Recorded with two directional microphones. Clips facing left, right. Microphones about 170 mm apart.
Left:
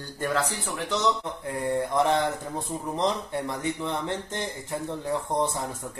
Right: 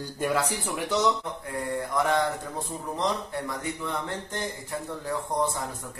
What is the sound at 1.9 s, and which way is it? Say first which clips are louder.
Speech: even; 25° left (ahead or behind).